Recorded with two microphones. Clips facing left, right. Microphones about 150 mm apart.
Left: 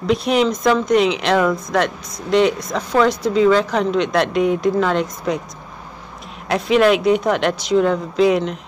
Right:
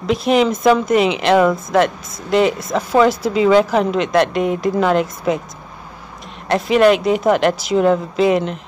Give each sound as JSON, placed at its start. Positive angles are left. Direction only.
{"t": 0.0, "sound": "speech", "side_deg": 0}
{"t": 6.5, "sound": "speech", "side_deg": 0}